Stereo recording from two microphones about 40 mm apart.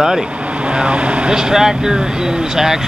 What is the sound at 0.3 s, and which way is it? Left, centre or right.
Speech, right.